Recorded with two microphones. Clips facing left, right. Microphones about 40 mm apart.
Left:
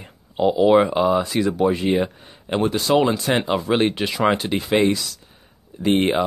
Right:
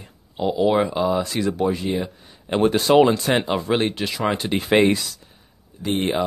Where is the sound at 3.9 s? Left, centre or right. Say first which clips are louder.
Left 4 dB; centre.